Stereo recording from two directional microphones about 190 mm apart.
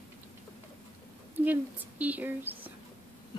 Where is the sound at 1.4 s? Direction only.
10° right (ahead or behind).